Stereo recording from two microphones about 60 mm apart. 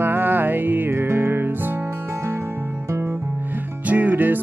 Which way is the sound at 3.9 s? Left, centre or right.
Right.